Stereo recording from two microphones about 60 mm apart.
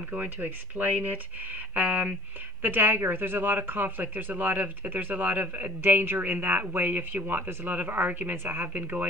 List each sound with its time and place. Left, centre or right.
0.1 s speech: right